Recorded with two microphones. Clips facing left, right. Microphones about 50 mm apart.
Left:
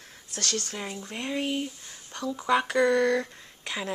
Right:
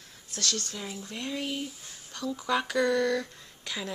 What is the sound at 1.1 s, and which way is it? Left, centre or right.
Speech, left.